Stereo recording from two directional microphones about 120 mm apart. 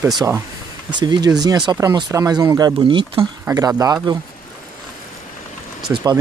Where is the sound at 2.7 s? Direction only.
45° right (ahead or behind).